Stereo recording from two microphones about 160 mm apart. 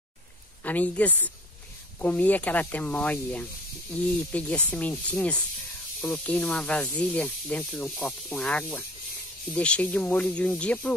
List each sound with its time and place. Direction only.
0.7 s speech: 10° left (ahead or behind)